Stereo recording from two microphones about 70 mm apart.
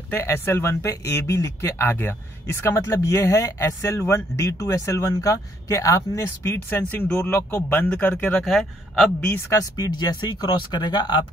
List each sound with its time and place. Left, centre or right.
0.1 s speech: left
6.7 s speech: left
8.5 s a man's voice: centre
9.5 s speech: left